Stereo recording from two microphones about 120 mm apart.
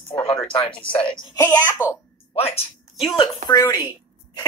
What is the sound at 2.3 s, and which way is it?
Speech, 55° left (ahead or behind).